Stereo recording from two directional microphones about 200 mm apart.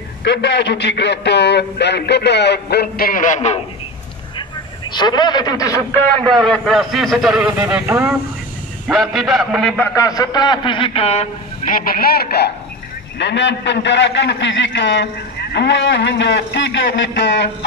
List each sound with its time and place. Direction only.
0.2 s a man's voice: 60° left (ahead or behind); by 3.6 s 35° left (ahead or behind)
4.9 s a man's voice: 20° left (ahead or behind)
6.3 s a man's voice: centre (ahead or behind)
8.8 s a man's voice: centre (ahead or behind)
9.9 s a man's voice: 15° left (ahead or behind); by 17.6 s 60° left (ahead or behind)